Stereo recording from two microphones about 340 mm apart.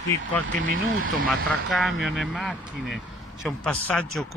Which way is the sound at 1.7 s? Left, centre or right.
Centre.